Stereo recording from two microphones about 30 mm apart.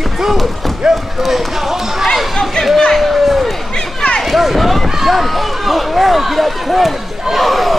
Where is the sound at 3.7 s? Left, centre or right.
Left.